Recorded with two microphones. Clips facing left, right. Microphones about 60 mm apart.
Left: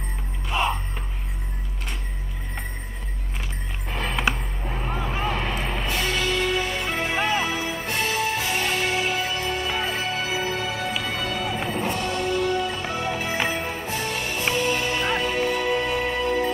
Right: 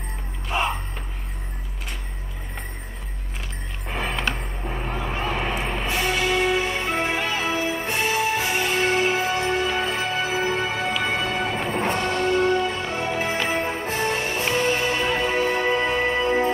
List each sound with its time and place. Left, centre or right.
0.5 s music: centre
3.9 s music: centre
5.1 s a sound: centre
5.4 s music: centre
7.2 s music: left
7.4 s music: right